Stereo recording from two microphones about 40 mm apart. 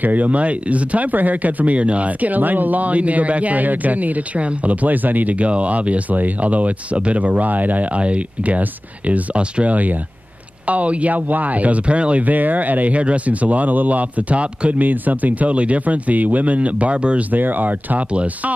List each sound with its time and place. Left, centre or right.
0.0 s speech: right
4.8 s speech: right
14.8 s speech: right
17.3 s speech: right